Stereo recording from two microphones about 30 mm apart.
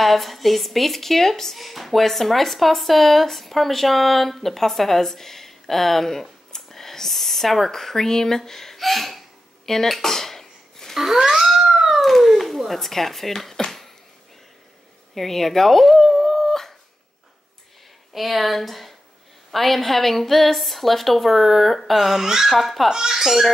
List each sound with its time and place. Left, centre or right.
0.0 s speech: centre
1.6 s speech: centre
6.5 s a sound: centre
9.7 s speech: centre
9.9 s a sound: centre
11.0 s a sound: centre
11.7 s cat: centre
15.1 s speech: centre
16.3 s dog: centre
18.1 s speech: centre
22.2 s speech: centre
22.5 s speech: centre
22.8 s speech: centre